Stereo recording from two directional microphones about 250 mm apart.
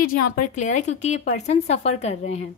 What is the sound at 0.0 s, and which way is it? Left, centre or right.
A woman's voice, left.